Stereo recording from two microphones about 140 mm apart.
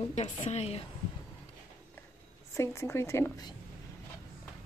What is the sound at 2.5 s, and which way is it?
Speech, 20° left (ahead or behind).